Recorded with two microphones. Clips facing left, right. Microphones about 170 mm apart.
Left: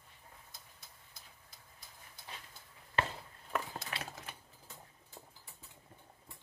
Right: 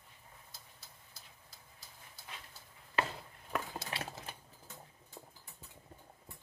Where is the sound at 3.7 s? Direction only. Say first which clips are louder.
Right 2 dB; 30° right (ahead or behind).